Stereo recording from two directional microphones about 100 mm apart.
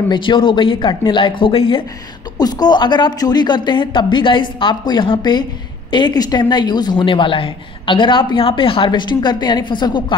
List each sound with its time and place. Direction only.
0.1 s speech: 55° left (ahead or behind)
2.3 s speech: 40° left (ahead or behind)